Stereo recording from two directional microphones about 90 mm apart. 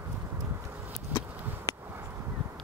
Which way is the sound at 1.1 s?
20° right (ahead or behind).